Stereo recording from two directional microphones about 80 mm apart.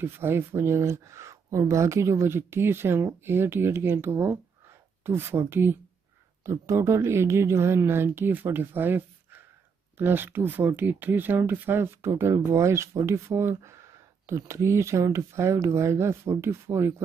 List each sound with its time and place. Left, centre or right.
0.0 s speech: right